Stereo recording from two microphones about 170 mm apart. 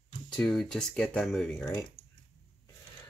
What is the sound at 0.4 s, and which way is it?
Speech, 5° left (ahead or behind).